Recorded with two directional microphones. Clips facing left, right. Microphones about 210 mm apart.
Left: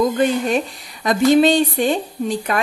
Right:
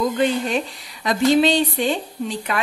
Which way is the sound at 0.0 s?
45° left (ahead or behind).